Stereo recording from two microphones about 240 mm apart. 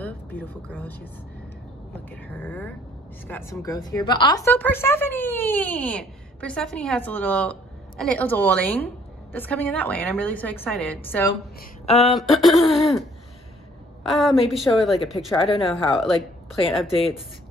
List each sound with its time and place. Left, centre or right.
0.0 s a sound: centre
2.0 s a woman's voice: centre
11.8 s speech: left
12.1 s a woman's voice: centre
14.0 s a woman's voice: centre